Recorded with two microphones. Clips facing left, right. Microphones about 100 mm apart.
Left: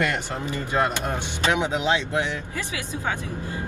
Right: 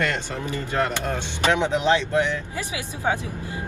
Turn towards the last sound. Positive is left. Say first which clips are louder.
# right 3 dB
turn(degrees=-20)  # may be behind; listen again after turning